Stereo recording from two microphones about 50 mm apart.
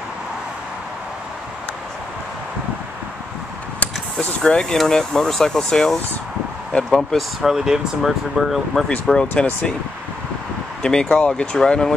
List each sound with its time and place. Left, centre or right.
4.4 s speech: centre
7.4 s speech: centre
9.1 s speech: centre
10.8 s speech: centre